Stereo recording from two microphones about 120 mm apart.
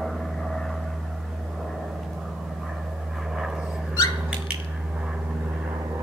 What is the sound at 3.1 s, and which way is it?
Vehicle, 5° right (ahead or behind).